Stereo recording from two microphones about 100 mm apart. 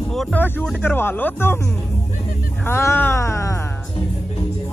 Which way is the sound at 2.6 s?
25° left (ahead or behind).